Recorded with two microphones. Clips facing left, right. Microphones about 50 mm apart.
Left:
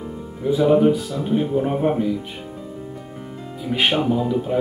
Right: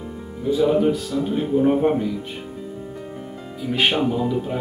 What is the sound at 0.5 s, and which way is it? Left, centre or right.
Speech, centre.